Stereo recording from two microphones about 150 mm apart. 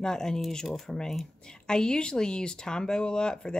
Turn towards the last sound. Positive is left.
turn(degrees=5)  # may be behind; listen again after turning